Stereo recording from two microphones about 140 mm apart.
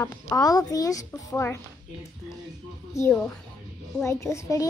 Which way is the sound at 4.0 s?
20° left (ahead or behind).